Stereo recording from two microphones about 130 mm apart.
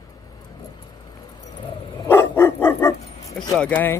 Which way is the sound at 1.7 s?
40° left (ahead or behind).